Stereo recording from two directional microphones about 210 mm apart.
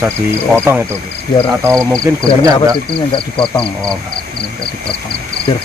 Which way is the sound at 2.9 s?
25° left (ahead or behind).